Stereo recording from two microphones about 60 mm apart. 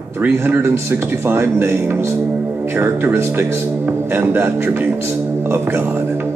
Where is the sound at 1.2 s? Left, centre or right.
Right.